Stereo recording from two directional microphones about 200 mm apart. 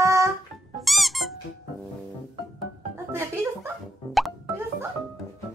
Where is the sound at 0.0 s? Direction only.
15° right (ahead or behind).